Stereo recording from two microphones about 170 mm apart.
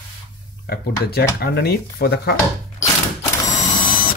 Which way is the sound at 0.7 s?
65° left (ahead or behind).